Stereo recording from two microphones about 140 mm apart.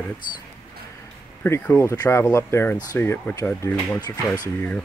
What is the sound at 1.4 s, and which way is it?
Speech, 15° left (ahead or behind).